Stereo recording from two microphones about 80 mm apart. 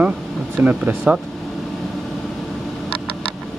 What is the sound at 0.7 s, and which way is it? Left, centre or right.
Speech, right.